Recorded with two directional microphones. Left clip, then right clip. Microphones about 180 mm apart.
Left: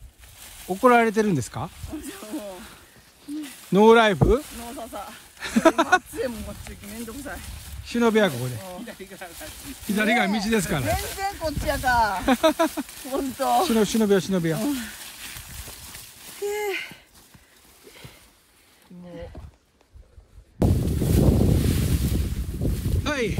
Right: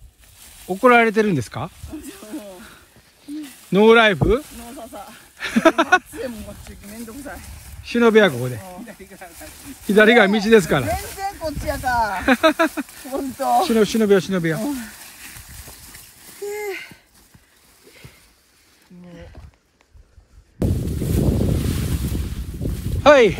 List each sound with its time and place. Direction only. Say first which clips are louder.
0.4 s speech: right 3 dB; 15° left (ahead or behind)
3.3 s a sound: right 2 dB; 10° left (ahead or behind)
4.3 s speech: right 2 dB; 5° left (ahead or behind)
6.8 s speech: right 2 dB; 10° left (ahead or behind)
8.8 s speech: even; 15° left (ahead or behind)
9.6 s speech: right 12 dB; centre (ahead or behind)
15.7 s horse: left 1 dB; 15° left (ahead or behind)
20.5 s a sound: even; centre (ahead or behind)
21.8 s ocean: even; centre (ahead or behind)
22.8 s a sound: right 16 dB; 5° right (ahead or behind)